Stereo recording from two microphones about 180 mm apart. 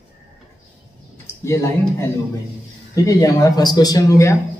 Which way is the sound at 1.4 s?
15° left (ahead or behind).